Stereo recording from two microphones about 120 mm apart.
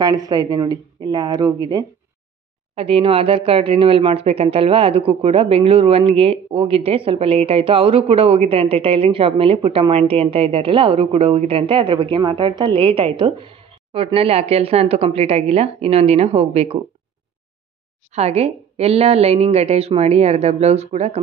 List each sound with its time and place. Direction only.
0.0 s speech: 30° right (ahead or behind)
2.7 s speech: 50° right (ahead or behind)
18.1 s a woman's voice: 60° right (ahead or behind)